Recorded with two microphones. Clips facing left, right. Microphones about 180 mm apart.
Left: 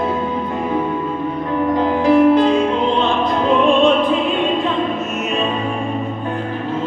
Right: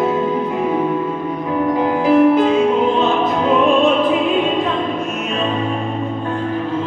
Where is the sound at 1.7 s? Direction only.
10° right (ahead or behind).